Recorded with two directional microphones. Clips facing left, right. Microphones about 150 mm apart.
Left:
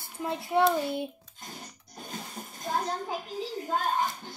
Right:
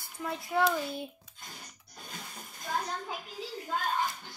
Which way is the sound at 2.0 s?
30° left (ahead or behind).